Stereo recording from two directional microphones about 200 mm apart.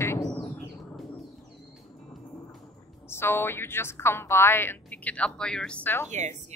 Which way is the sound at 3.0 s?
10° left (ahead or behind).